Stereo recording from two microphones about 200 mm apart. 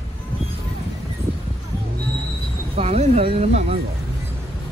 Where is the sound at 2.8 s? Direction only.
30° right (ahead or behind).